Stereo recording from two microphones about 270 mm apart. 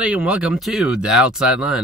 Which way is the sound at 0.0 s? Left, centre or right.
Centre.